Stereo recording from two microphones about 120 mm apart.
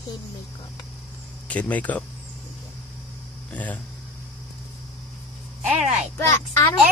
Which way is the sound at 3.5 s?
15° left (ahead or behind).